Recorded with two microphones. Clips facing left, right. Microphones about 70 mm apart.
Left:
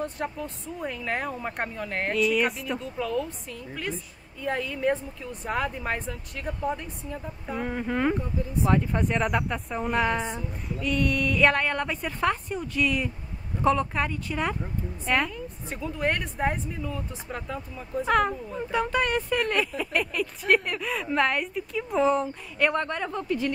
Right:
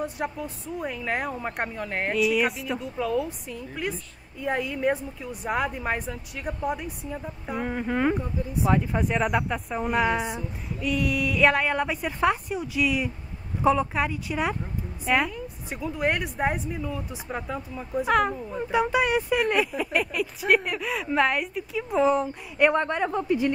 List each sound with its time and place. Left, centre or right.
0.0 s a woman's voice: centre
22.7 s a woman's voice: centre